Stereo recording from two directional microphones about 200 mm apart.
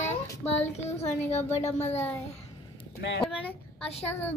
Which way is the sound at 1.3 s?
35° left (ahead or behind).